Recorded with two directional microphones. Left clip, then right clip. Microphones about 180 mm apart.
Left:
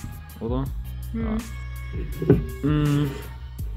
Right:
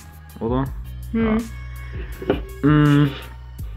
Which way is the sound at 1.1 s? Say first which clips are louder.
Right 10 dB; 25° right (ahead or behind).